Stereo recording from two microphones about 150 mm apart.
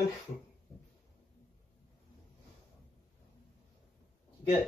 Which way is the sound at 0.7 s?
Centre (ahead or behind).